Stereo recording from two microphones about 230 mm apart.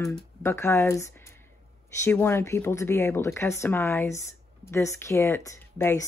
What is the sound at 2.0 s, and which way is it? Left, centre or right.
Speech, centre.